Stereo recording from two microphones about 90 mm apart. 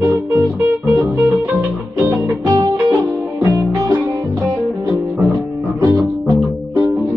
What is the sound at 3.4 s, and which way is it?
Music, 35° right (ahead or behind).